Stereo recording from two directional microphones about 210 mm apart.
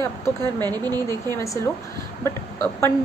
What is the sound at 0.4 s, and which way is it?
Speech, 20° right (ahead or behind).